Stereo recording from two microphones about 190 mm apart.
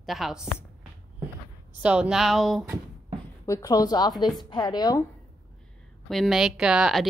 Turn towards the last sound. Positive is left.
turn(degrees=0)  # may be behind; listen again after turning